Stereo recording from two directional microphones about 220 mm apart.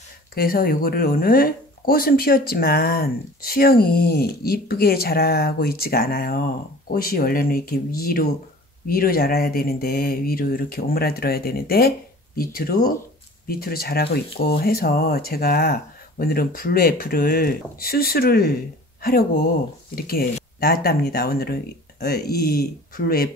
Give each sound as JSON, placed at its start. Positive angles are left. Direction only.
{"t": 0.3, "sound": "speech", "side_deg": 45}
{"t": 20.0, "sound": "speech", "side_deg": 40}